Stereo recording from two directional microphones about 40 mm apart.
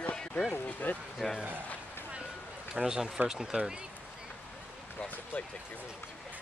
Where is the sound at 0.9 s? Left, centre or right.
Left.